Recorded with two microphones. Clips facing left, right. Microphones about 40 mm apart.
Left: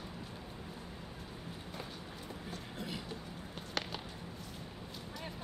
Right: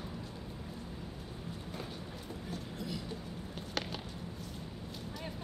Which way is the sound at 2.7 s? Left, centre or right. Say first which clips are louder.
Even; left.